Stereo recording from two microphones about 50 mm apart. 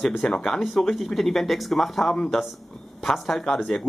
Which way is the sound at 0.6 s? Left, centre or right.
Centre.